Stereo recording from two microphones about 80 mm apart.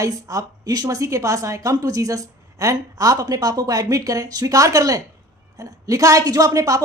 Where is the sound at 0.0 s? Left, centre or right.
Right.